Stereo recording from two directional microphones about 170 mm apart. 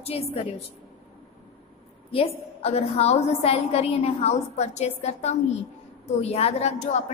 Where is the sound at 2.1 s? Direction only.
35° left (ahead or behind).